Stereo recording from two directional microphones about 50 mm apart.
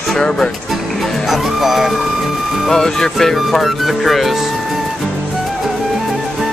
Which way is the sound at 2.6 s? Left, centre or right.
Centre.